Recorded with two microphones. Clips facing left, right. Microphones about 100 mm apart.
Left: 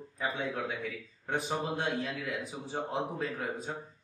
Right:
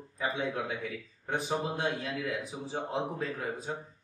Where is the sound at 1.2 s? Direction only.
Centre (ahead or behind).